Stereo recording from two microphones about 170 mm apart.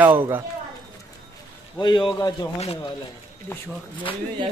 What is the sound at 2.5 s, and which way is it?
Speech, 35° left (ahead or behind).